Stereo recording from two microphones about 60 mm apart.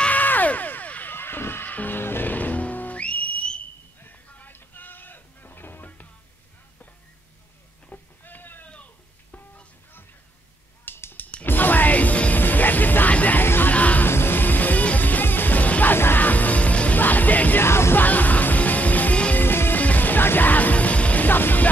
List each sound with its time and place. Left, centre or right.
0.0 s a sound: left
1.1 s music: left
4.0 s a sound: left
4.6 s music: left
7.9 s a sound: left
10.9 s drum: left
11.4 s music: left
14.0 s music: left
17.6 s music: left
18.0 s music: left
19.4 s music: left